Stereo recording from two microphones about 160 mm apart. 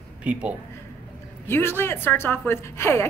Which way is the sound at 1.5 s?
15° left (ahead or behind).